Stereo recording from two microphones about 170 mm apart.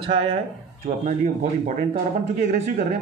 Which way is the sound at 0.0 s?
30° right (ahead or behind).